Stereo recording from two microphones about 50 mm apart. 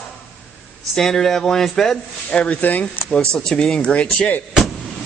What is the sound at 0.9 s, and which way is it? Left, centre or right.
Speech, centre.